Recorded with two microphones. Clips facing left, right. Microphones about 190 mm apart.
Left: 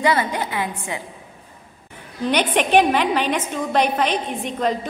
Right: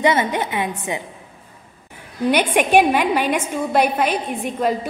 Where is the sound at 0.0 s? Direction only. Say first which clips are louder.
Right 2 dB; 20° right (ahead or behind).